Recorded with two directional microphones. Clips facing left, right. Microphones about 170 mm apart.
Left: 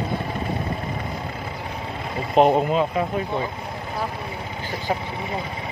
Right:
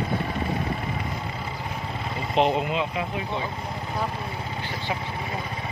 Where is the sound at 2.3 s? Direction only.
45° left (ahead or behind).